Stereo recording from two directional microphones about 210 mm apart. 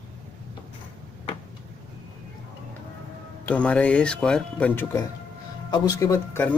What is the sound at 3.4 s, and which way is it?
Speech, 5° left (ahead or behind).